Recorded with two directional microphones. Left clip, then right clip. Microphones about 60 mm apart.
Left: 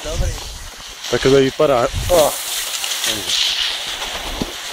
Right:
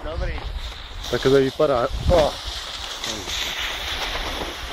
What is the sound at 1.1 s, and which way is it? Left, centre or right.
Speech, centre.